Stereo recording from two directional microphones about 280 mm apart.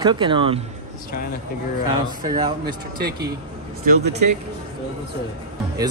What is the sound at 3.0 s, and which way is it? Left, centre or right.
Speech, right.